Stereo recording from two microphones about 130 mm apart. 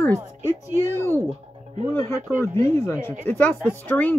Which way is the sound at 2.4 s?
20° left (ahead or behind).